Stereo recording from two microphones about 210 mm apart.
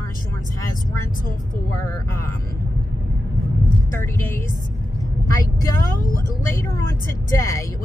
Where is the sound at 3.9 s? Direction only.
10° left (ahead or behind).